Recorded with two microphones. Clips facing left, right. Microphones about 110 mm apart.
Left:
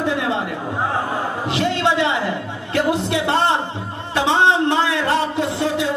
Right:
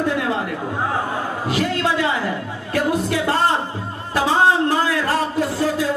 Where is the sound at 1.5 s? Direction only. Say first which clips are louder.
Left 2 dB; 25° left (ahead or behind).